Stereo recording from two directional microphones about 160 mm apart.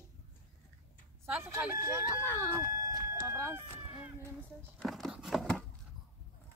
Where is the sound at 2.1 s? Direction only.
15° left (ahead or behind).